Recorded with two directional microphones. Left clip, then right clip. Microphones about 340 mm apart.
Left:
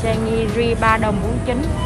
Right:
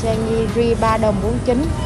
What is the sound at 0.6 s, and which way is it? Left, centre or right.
Speech, centre.